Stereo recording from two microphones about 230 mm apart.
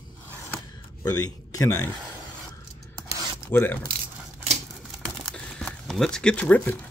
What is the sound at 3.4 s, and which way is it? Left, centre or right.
Speech, centre.